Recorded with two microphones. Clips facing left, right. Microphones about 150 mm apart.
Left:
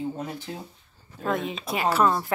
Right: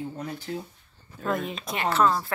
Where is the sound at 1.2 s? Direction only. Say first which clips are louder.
Left 1 dB; centre (ahead or behind).